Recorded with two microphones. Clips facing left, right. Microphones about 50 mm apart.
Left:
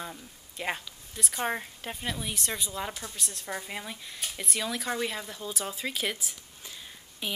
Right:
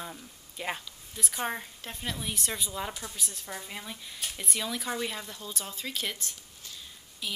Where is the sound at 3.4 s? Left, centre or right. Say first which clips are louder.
Left 5 dB; centre.